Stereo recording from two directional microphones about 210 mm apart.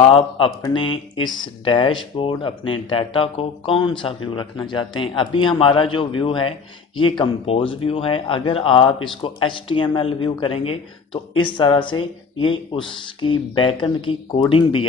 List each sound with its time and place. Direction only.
0.0 s speech: 25° left (ahead or behind)